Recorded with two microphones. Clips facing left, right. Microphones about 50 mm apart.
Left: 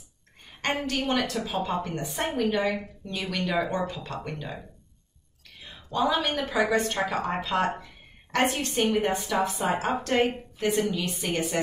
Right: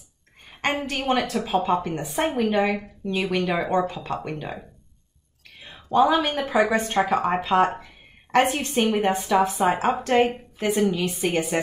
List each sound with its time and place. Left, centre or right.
0.8 s a woman's voice: centre
5.6 s a woman's voice: right
10.6 s a woman's voice: right
11.1 s speech: centre